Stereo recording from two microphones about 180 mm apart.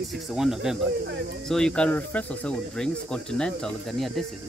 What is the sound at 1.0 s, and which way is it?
Speech, 75° right (ahead or behind).